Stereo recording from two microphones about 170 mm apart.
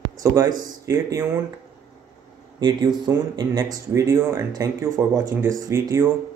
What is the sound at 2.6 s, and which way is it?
Speech, 25° right (ahead or behind).